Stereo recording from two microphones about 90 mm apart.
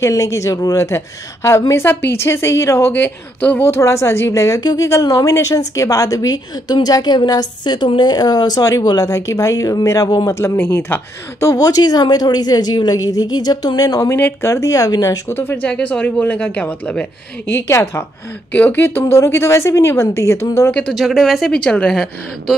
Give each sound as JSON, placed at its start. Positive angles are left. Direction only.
{"t": 0.0, "sound": "a woman's voice", "side_deg": 35}
{"t": 2.9, "sound": "speech", "side_deg": 15}
{"t": 3.7, "sound": "a woman's voice", "side_deg": 30}
{"t": 4.6, "sound": "speech", "side_deg": 45}
{"t": 4.8, "sound": "speech", "side_deg": 35}
{"t": 11.5, "sound": "speech", "side_deg": 45}
{"t": 14.0, "sound": "a woman's voice", "side_deg": 30}
{"t": 15.2, "sound": "speech", "side_deg": 25}
{"t": 17.5, "sound": "speech", "side_deg": 30}
{"t": 18.5, "sound": "a woman's voice", "side_deg": 20}
{"t": 20.7, "sound": "speech", "side_deg": 10}
{"t": 21.0, "sound": "speech", "side_deg": 0}